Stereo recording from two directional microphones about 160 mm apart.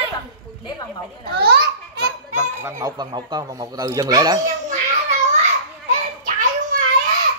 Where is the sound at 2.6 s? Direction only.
25° right (ahead or behind).